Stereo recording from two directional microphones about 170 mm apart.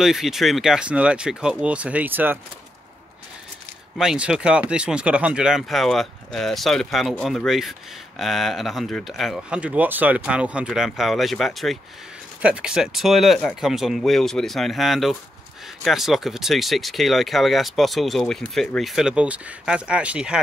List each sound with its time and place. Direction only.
0.0 s speech: centre (ahead or behind)
4.0 s speech: 5° right (ahead or behind)